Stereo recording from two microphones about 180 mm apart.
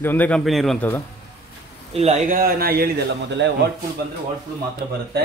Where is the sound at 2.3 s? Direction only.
55° right (ahead or behind).